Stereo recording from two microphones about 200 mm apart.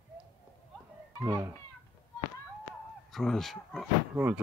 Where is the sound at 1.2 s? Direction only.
15° right (ahead or behind).